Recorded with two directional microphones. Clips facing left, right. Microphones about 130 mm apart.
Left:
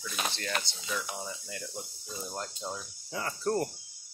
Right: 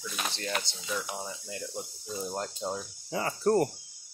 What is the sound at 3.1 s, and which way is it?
Cricket, 10° right (ahead or behind).